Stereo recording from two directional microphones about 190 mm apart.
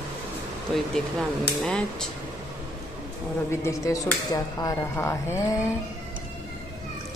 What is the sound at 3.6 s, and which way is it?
Speech, 15° left (ahead or behind).